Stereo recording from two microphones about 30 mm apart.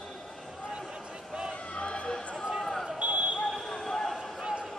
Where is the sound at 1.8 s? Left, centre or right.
Left.